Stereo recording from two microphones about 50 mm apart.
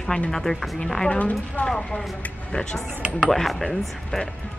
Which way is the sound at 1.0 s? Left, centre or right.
Left.